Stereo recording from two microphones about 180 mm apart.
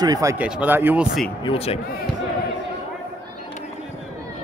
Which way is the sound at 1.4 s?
30° left (ahead or behind).